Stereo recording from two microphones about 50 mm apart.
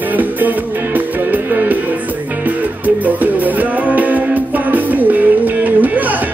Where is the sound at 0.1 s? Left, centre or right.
Right.